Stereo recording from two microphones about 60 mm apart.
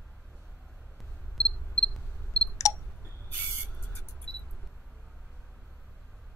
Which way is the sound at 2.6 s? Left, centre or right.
Left.